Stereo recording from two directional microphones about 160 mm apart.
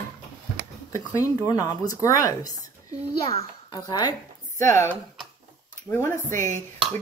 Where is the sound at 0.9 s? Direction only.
20° left (ahead or behind).